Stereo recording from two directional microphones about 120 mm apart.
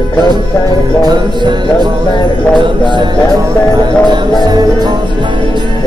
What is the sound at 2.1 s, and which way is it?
Jingle bell, 40° left (ahead or behind).